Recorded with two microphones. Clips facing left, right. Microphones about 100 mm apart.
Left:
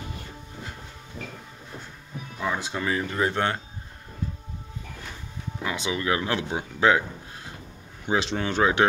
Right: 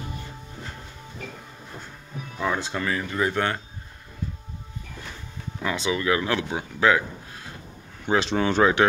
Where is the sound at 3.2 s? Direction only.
25° left (ahead or behind).